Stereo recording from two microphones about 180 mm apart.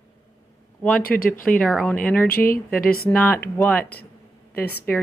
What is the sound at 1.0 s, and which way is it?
Speech, 55° left (ahead or behind).